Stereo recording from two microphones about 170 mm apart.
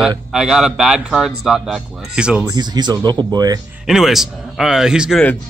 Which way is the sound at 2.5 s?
25° right (ahead or behind).